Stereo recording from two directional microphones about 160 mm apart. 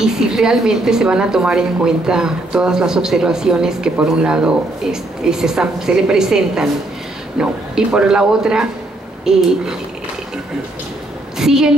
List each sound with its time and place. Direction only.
0.0 s a woman's voice: 5° right (ahead or behind)
11.3 s a woman's voice: 5° right (ahead or behind)